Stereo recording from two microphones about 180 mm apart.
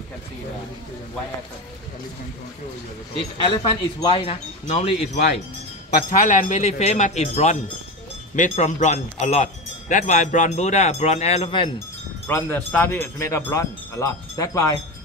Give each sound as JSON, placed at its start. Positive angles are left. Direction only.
{"t": 3.4, "sound": "speech", "side_deg": 25}
{"t": 5.9, "sound": "speech", "side_deg": 45}
{"t": 12.3, "sound": "speech", "side_deg": 10}